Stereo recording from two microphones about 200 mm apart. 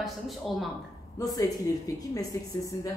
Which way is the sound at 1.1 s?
15° left (ahead or behind).